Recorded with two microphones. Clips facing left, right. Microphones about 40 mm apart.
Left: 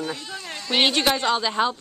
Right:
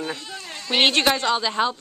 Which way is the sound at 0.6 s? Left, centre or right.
Centre.